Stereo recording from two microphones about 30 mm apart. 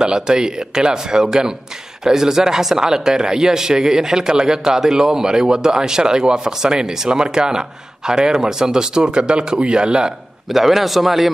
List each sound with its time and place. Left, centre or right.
0.0 s a man's voice: right
10.5 s a man's voice: centre